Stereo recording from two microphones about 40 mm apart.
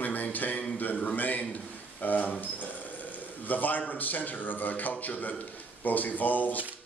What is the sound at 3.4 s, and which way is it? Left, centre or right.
Speech, left.